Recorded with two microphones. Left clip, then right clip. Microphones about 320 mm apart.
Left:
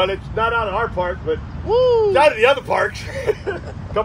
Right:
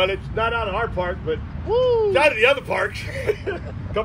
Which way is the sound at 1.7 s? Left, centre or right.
Left.